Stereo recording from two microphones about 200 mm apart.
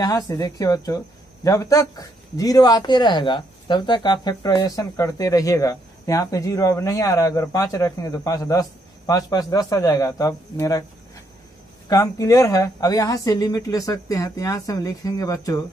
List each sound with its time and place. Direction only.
0.0 s speech: 20° left (ahead or behind)
11.9 s speech: 15° left (ahead or behind)